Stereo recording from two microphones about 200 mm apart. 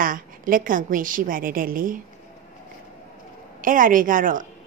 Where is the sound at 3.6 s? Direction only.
40° right (ahead or behind).